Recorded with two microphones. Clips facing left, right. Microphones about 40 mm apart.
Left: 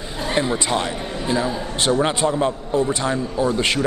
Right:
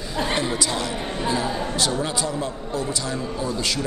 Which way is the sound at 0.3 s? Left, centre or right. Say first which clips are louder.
Left 6 dB; left.